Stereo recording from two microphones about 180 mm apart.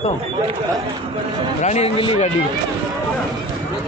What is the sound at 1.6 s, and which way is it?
Speech, 35° left (ahead or behind).